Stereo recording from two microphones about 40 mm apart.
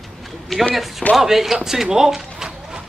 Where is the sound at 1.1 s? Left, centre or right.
Centre.